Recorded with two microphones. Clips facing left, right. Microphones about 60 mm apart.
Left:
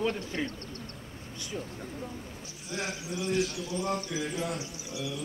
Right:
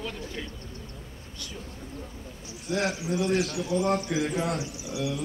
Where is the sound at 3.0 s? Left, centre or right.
Right.